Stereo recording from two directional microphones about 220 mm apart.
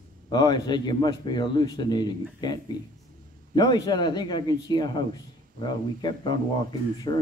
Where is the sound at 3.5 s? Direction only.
20° left (ahead or behind).